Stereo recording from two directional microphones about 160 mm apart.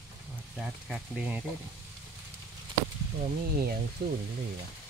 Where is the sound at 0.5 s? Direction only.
5° right (ahead or behind).